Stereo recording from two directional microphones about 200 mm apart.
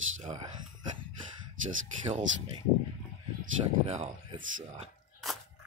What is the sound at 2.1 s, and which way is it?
Speech, 25° right (ahead or behind).